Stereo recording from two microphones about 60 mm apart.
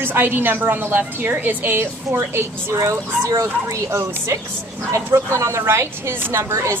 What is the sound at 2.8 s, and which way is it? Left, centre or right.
Speech, right.